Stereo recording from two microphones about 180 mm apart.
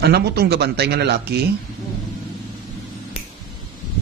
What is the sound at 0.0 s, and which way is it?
Speech, 65° right (ahead or behind).